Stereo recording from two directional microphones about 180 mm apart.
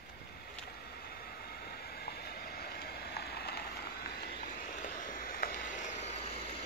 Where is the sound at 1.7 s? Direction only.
60° left (ahead or behind); by 6.2 s 40° left (ahead or behind).